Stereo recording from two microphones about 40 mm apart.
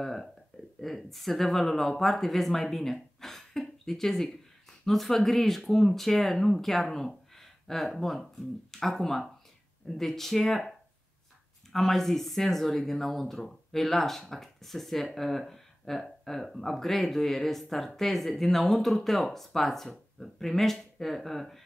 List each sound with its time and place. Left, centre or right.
0.0 s a sound: centre
0.7 s speech: centre
11.7 s speech: centre